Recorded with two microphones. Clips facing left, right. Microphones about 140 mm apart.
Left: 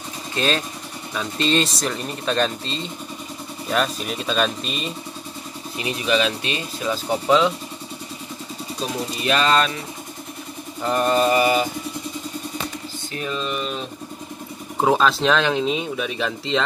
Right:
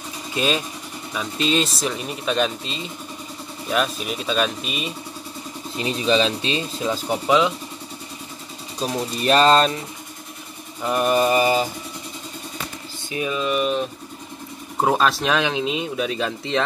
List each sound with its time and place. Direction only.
0.4 s mantra: 10° right (ahead or behind)
1.1 s speech: 5° right (ahead or behind)
5.8 s speech: 30° right (ahead or behind)
7.1 s mantra: 10° right (ahead or behind)
9.2 s music: 35° right (ahead or behind)
10.8 s mantra: 10° right (ahead or behind); by 11.6 s 25° right (ahead or behind)
13.1 s mantra: 10° right (ahead or behind)
14.8 s speech: centre (ahead or behind)